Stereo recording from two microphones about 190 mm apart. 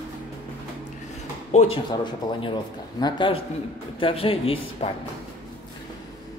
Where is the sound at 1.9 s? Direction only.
25° left (ahead or behind).